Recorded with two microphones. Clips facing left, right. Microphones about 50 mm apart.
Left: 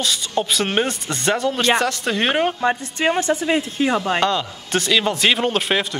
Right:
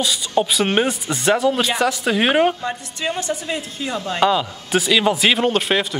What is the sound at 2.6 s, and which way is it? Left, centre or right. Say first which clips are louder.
Speech: left 6 dB; left.